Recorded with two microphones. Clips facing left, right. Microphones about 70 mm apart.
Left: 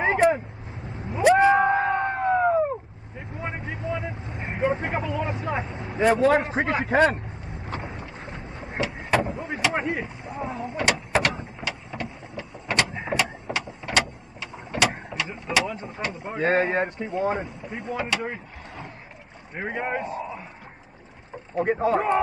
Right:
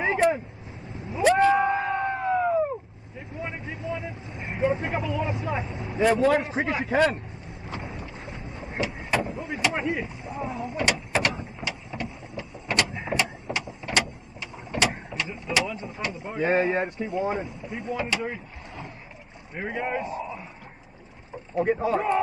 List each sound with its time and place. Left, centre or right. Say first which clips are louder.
1.2 s a sound: left 2 dB; left
3.2 s vehicle: left 2 dB; left
6.4 s speech: left 2 dB; left
6.9 s speech: left 2 dB; left
7.6 s boat: left 1 dB; left
9.5 s vehicle: even; left
15.7 s speech: left 1 dB; left
16.3 s speech: left 1 dB; left
16.7 s speech: left 1 dB; left
18.2 s vehicle: even; left
19.5 s speech: left 1 dB; left
20.0 s a sound: left 1 dB; left
21.5 s speech: left 1 dB; left